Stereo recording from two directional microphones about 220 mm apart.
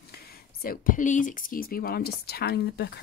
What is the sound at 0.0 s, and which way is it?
Speech, 45° left (ahead or behind).